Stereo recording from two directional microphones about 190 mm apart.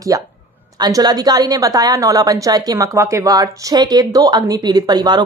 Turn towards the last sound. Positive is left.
turn(degrees=-20)  # may be behind; listen again after turning